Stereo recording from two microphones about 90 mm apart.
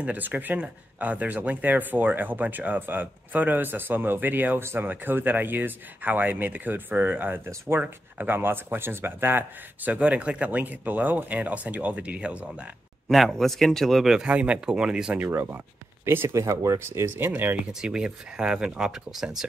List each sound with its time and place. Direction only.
0.0 s speech: 20° right (ahead or behind)
9.8 s speech: 15° right (ahead or behind)
13.1 s speech: centre (ahead or behind)
15.1 s speech: 25° right (ahead or behind)
17.7 s speech: 10° right (ahead or behind)